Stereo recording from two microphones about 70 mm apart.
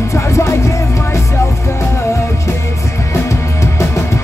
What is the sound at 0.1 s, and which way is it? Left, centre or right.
Music, left.